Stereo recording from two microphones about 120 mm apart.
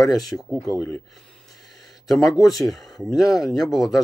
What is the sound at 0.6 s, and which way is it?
Speech, 25° left (ahead or behind).